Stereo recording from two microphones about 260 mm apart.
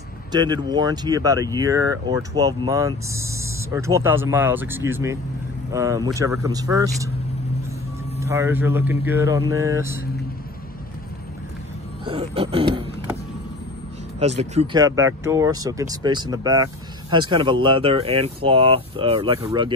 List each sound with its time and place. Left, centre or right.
0.3 s speech: centre
8.2 s speech: centre
12.0 s a sound: centre
14.2 s speech: right